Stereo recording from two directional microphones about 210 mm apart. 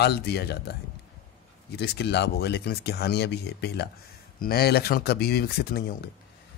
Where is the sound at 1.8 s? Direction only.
55° left (ahead or behind).